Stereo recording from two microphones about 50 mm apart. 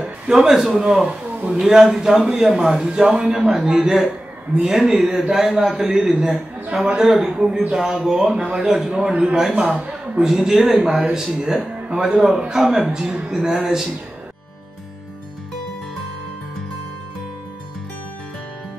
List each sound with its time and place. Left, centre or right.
0.0 s a man's voice: centre
8.9 s a man's voice: centre
12.1 s a man's voice: centre